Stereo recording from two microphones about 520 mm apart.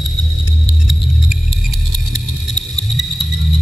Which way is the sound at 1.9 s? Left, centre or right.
Left.